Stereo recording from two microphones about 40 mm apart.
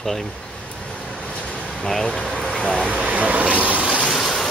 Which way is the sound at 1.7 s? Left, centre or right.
Centre.